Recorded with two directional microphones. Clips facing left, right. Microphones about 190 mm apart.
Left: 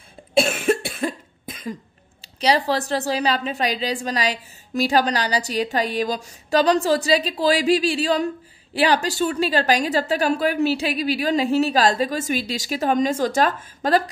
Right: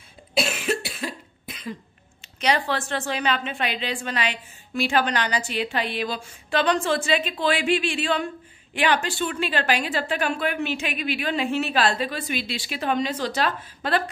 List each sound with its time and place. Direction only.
0.4 s cough: 50° left (ahead or behind)
2.2 s a woman's voice: 35° left (ahead or behind)